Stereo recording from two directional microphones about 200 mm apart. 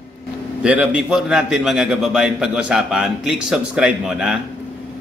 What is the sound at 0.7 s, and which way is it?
A man's voice, 5° right (ahead or behind).